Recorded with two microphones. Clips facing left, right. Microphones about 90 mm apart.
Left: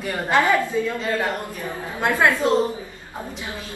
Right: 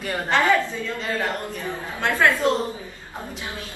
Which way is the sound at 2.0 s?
20° left (ahead or behind).